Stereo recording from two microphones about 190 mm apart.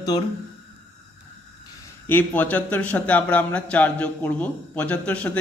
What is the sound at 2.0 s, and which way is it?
Speech, 10° left (ahead or behind).